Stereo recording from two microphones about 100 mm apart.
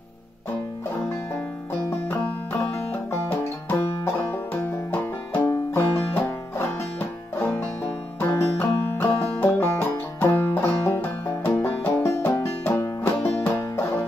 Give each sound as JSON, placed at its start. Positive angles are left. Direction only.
{"t": 3.1, "sound": "music", "side_deg": 20}
{"t": 3.7, "sound": "banjo", "side_deg": 25}
{"t": 5.3, "sound": "music", "side_deg": 20}
{"t": 13.4, "sound": "banjo", "side_deg": 25}